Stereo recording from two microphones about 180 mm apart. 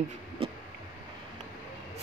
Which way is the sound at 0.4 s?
30° right (ahead or behind).